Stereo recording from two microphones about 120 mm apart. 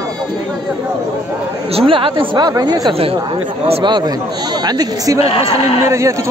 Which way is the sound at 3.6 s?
55° right (ahead or behind).